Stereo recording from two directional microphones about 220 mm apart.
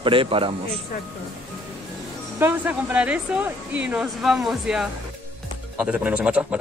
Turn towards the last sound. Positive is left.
turn(degrees=-5)  # may be behind; listen again after turning